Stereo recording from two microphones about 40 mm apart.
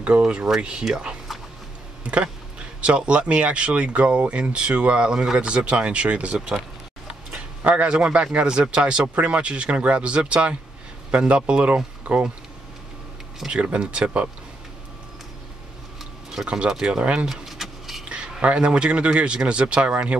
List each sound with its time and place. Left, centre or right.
0.0 s speech: right
2.1 s speech: right
7.3 s speech: right
13.5 s speech: right
16.4 s speech: right
17.3 s vehicle: centre
18.0 s a sound: right
18.4 s speech: right